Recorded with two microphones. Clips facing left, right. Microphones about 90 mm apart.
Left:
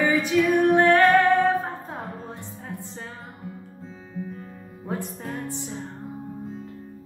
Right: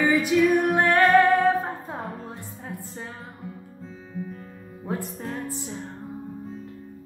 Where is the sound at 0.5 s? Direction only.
10° right (ahead or behind).